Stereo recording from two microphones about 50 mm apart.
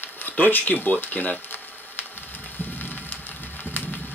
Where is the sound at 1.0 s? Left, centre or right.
Left.